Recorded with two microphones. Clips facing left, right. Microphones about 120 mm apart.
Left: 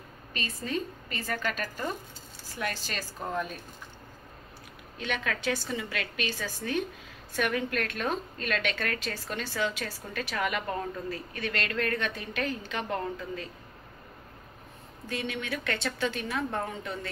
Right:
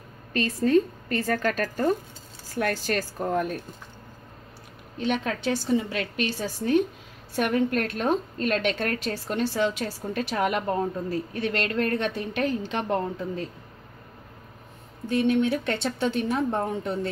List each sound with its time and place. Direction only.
0.7 s a woman's voice: 50° right (ahead or behind)
3.2 s speech: 15° right (ahead or behind)
5.0 s a woman's voice: 35° right (ahead or behind)
15.4 s a woman's voice: 25° right (ahead or behind)